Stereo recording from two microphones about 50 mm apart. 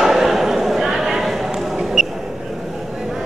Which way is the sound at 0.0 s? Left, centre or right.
Centre.